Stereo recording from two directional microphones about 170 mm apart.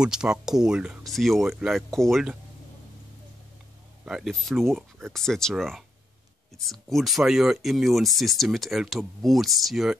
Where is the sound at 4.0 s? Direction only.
Centre (ahead or behind).